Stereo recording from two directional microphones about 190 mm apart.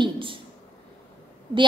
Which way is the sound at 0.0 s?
25° right (ahead or behind).